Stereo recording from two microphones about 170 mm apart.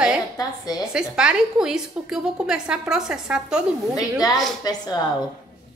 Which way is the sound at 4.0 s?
20° left (ahead or behind).